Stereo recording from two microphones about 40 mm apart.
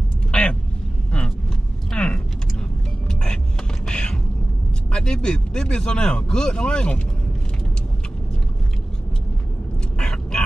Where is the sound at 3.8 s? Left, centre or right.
Left.